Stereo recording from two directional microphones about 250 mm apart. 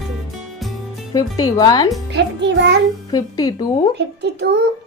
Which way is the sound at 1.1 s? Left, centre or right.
Centre.